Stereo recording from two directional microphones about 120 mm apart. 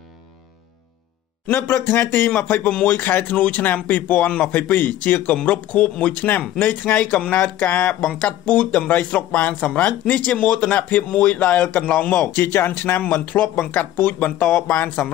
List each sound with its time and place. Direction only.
1.5 s speech: 15° left (ahead or behind)